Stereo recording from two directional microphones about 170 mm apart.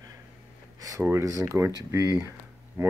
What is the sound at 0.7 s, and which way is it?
Speech, 20° right (ahead or behind).